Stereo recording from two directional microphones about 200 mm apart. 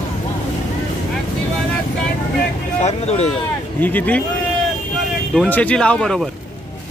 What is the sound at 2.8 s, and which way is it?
Speech, 35° left (ahead or behind).